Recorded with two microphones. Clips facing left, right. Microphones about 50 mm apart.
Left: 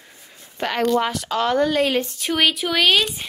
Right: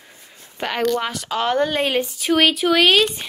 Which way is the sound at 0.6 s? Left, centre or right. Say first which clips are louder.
Left 1 dB; centre.